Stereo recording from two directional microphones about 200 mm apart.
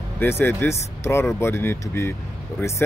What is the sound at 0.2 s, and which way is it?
Speech, 10° left (ahead or behind).